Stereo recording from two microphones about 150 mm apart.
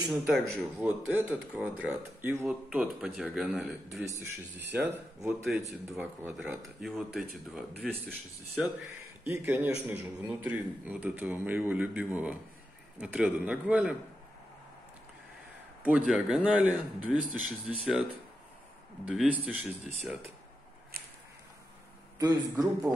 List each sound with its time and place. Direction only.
0.1 s speech: centre (ahead or behind)
0.7 s a man's voice: 10° right (ahead or behind)
8.5 s a man's voice: 10° right (ahead or behind)
15.8 s a man's voice: 5° right (ahead or behind)
19.0 s a man's voice: 10° right (ahead or behind)
22.2 s a man's voice: 25° right (ahead or behind)